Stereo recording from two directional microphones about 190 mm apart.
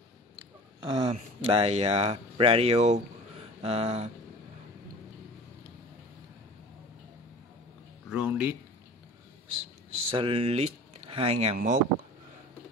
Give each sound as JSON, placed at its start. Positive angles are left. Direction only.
{"t": 0.9, "sound": "speech", "side_deg": -30}
{"t": 8.1, "sound": "speech", "side_deg": -10}
{"t": 10.0, "sound": "speech", "side_deg": -30}